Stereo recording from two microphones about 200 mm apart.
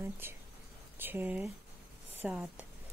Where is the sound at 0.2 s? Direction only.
10° right (ahead or behind).